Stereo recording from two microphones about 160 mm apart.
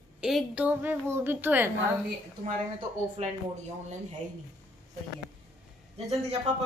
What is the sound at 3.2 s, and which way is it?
Speech, 40° right (ahead or behind).